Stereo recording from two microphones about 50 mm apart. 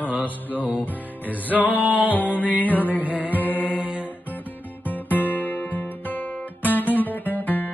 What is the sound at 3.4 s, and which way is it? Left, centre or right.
Mantra, left.